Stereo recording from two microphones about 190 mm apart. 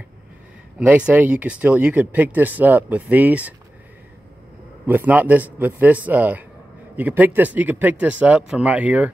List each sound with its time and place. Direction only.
0.7 s speech: 5° right (ahead or behind)
4.8 s speech: 10° right (ahead or behind)